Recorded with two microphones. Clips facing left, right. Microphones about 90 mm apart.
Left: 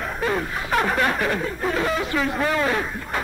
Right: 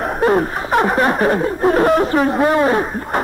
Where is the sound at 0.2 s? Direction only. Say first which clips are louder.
Right 10 dB; 45° right (ahead or behind).